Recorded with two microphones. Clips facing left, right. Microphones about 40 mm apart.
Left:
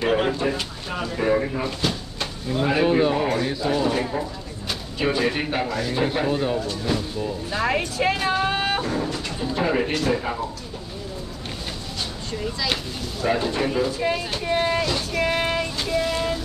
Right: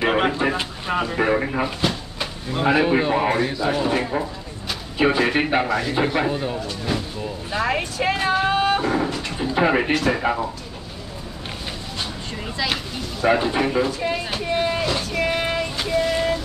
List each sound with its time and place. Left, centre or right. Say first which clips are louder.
0.0 s a sound: right 2 dB; right
0.4 s speech: right 3 dB; right
1.8 s drawer open or close: right 2 dB; centre
2.5 s speech: right 2 dB; right
6.3 s a woman's voice: left 2 dB; centre
6.7 s a woman's voice: left 1 dB; centre
8.5 s vehicle: right 4 dB; centre
8.8 s vehicle: right 4 dB; right
9.4 s speech: right 4 dB; right
13.2 s speech: right 4 dB; right
14.1 s speech: even; centre
14.8 s vehicle: right 1 dB; centre
15.1 s child singing: left 1 dB; centre